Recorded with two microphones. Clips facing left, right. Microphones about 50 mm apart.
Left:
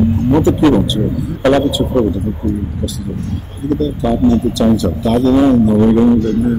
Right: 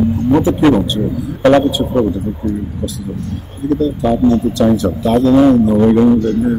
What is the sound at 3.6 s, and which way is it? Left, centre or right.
Speech, right.